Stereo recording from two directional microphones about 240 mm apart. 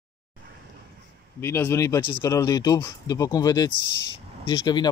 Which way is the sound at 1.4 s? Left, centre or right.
Centre.